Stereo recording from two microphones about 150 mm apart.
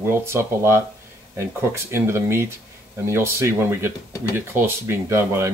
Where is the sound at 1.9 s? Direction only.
15° right (ahead or behind).